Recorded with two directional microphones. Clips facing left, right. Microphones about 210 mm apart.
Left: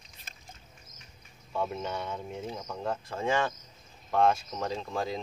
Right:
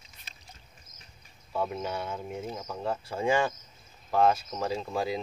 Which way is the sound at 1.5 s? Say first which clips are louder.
Right 1 dB; 5° right (ahead or behind).